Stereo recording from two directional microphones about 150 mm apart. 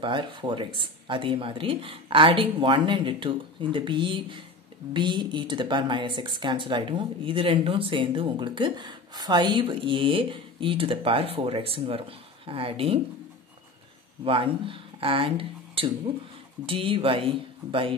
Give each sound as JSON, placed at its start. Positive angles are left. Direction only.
{"t": 0.0, "sound": "speech", "side_deg": -30}
{"t": 14.2, "sound": "speech", "side_deg": -35}